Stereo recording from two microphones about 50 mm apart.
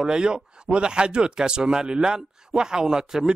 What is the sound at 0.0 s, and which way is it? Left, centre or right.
Speech, centre.